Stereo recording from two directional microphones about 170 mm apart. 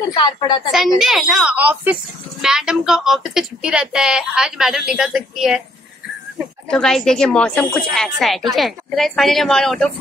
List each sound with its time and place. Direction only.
0.1 s a woman's voice: 25° left (ahead or behind)
0.7 s speech: centre (ahead or behind)
6.7 s speech: 5° left (ahead or behind)